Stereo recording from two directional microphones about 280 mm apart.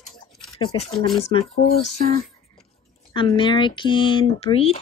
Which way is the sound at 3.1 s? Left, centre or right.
Centre.